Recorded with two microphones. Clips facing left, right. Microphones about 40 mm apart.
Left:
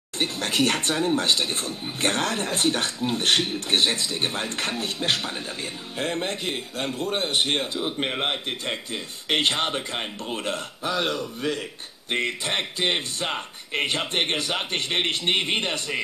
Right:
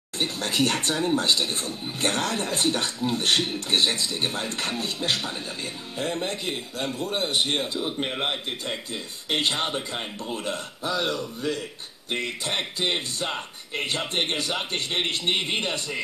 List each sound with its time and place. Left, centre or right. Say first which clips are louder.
0.2 s a man's voice: left 1 dB; left
9.3 s speech: left 2 dB; left